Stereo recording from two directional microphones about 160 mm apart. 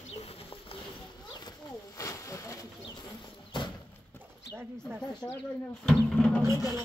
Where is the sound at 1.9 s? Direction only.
20° left (ahead or behind).